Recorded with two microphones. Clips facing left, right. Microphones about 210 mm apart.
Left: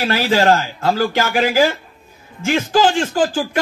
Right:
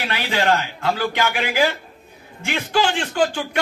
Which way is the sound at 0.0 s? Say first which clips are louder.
Left 7 dB; 40° left (ahead or behind).